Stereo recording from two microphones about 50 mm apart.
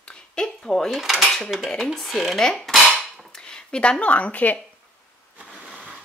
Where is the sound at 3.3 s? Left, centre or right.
Centre; by 4.5 s left.